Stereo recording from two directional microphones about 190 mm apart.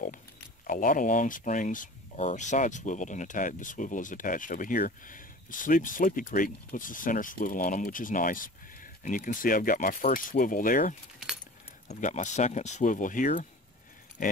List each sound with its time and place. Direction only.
0.7 s speech: 45° left (ahead or behind)